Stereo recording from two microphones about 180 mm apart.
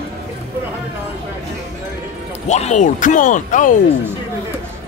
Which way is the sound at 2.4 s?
40° left (ahead or behind).